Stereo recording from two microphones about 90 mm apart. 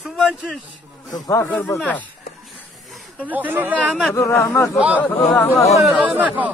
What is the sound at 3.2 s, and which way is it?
Speech, 20° right (ahead or behind).